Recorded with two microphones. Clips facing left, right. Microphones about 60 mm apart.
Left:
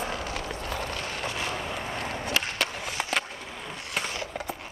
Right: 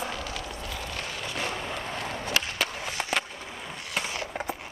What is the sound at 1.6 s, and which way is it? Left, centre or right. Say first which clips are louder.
Vehicle: left 1 dB; centre.